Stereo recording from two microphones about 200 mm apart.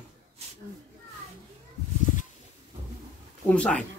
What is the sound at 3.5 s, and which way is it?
Speech, 5° left (ahead or behind).